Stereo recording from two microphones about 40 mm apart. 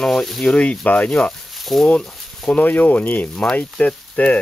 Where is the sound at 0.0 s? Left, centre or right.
Centre.